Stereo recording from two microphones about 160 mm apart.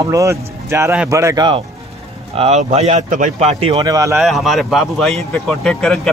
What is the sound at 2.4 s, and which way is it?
Speech, 40° right (ahead or behind).